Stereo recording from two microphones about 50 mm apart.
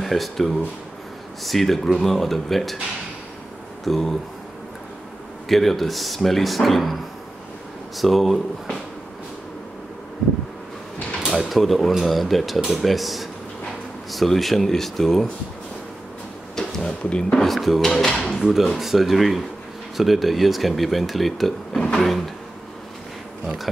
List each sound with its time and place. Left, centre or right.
0.0 s speech: centre
3.8 s speech: centre
5.5 s speech: centre
8.0 s speech: centre
11.1 s speech: centre
16.8 s speech: left
17.3 s speech: centre
23.4 s speech: centre